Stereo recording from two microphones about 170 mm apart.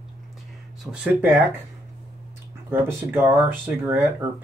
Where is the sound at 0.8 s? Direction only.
10° right (ahead or behind).